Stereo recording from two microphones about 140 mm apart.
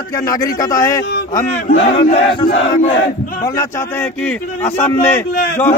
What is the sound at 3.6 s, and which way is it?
A man's voice, 20° left (ahead or behind).